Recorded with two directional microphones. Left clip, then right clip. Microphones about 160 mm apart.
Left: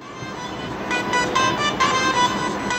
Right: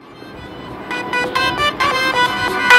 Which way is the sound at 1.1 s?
80° right.